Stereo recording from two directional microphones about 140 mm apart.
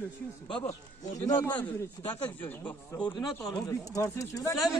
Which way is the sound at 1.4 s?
10° left (ahead or behind).